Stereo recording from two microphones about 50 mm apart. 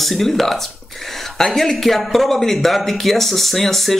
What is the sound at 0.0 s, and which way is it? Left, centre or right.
Speech, centre.